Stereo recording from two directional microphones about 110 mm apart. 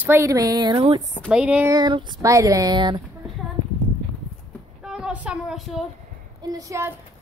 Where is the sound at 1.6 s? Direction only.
40° right (ahead or behind).